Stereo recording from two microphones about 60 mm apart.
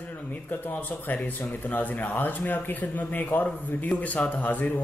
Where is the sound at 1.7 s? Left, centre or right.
Left.